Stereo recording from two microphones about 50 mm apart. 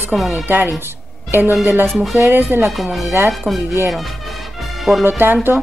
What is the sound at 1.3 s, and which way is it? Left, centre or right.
Speech, right.